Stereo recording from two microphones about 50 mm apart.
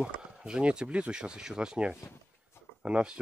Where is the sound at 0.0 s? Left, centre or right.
Centre.